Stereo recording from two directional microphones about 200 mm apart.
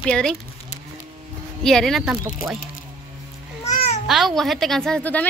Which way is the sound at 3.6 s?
35° left (ahead or behind).